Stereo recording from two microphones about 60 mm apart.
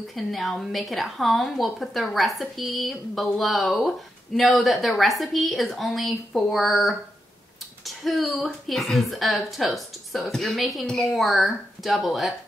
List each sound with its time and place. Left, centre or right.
0.1 s a woman's voice: centre